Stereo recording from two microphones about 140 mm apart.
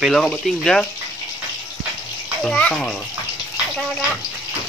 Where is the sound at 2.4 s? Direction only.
5° left (ahead or behind).